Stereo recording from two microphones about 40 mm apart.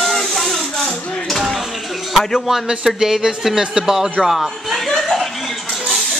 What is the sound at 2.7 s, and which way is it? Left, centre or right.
A man's voice, centre.